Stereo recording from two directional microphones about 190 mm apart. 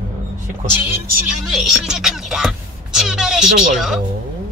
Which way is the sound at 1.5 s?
Centre (ahead or behind).